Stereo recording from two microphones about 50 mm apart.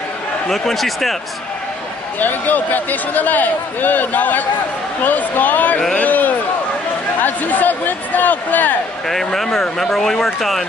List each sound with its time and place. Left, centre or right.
0.5 s speech: centre
2.1 s speech: left
5.9 s a sound: left
7.2 s speech: left
9.0 s speech: centre